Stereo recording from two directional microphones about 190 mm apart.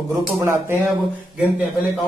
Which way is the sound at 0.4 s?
10° right (ahead or behind).